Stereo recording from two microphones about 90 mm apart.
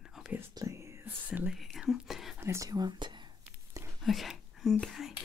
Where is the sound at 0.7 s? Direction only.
30° right (ahead or behind).